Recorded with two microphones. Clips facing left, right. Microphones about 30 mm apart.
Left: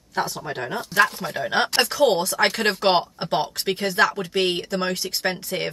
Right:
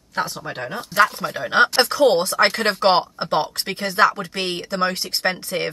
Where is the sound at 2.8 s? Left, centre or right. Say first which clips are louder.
Right 5 dB; centre.